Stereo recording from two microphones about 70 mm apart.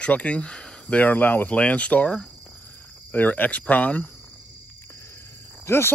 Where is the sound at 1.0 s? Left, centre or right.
Left.